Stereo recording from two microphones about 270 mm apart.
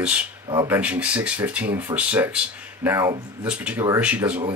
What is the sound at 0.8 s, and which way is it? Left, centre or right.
Speech, centre.